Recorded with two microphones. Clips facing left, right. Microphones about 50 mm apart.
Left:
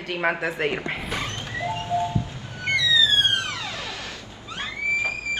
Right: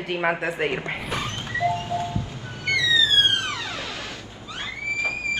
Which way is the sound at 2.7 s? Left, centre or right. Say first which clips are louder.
Even; right.